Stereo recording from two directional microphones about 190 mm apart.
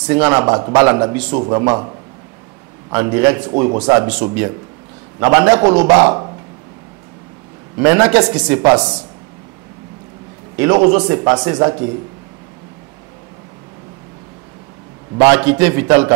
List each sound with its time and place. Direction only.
0.0 s a man's voice: 15° right (ahead or behind)
2.9 s a man's voice: 15° right (ahead or behind)
3.4 s a man's voice: 25° right (ahead or behind)
5.2 s a man's voice: 15° right (ahead or behind)
7.8 s a man's voice: 10° right (ahead or behind)
10.6 s a man's voice: 15° right (ahead or behind)
15.1 s a man's voice: 10° right (ahead or behind)